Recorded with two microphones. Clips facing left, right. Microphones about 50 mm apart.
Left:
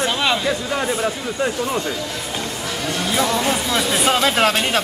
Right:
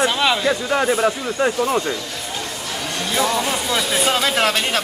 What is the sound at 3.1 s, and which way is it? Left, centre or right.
Speech, centre.